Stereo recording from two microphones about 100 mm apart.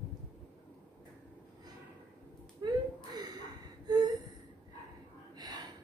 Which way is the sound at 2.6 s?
45° right (ahead or behind).